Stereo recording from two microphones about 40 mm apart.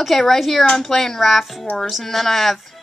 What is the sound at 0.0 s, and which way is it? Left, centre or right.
A woman's voice, centre.